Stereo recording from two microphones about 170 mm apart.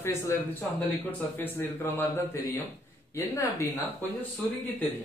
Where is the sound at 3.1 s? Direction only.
15° left (ahead or behind).